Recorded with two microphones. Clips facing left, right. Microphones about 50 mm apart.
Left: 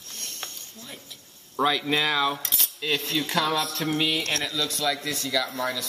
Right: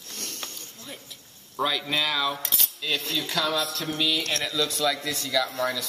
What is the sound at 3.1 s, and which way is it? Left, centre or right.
Speech, centre.